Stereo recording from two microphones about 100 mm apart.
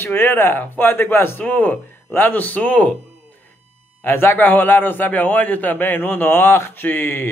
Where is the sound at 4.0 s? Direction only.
20° left (ahead or behind).